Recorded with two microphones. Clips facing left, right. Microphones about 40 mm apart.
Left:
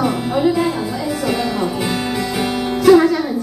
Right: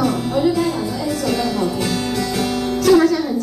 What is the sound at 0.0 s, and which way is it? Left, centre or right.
Music, centre.